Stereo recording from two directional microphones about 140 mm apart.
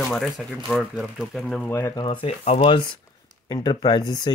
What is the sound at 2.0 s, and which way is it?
Speech, 45° left (ahead or behind).